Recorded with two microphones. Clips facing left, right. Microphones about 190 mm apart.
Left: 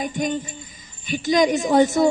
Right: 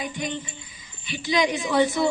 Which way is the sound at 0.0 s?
45° left (ahead or behind).